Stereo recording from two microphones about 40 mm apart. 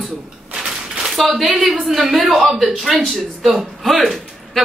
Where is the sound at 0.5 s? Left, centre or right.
Centre.